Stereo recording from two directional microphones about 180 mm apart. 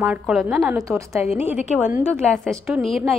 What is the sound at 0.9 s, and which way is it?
A woman's voice, 15° right (ahead or behind).